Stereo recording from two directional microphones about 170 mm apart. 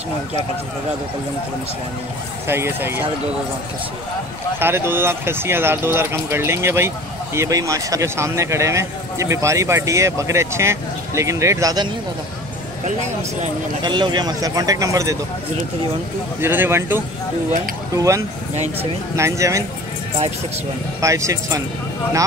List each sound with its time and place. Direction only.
2.4 s speech: 15° right (ahead or behind)
4.6 s speech: 15° right (ahead or behind)
12.8 s speech: 45° right (ahead or behind)
13.8 s a man's voice: 25° right (ahead or behind)
16.3 s a man's voice: 15° right (ahead or behind)
21.0 s a man's voice: 20° right (ahead or behind)